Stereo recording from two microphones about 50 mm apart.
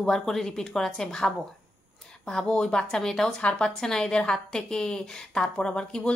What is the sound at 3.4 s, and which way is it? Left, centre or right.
Speech, left.